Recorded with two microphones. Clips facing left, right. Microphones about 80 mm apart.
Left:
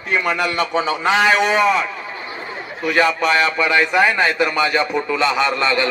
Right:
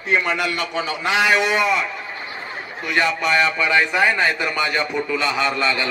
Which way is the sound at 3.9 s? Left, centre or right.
Centre.